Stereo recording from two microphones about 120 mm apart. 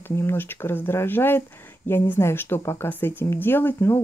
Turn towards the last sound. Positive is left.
turn(degrees=20)  # may be behind; listen again after turning